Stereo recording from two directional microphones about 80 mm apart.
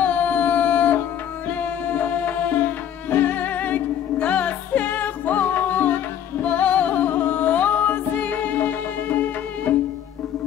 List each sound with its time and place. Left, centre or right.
0.0 s music: centre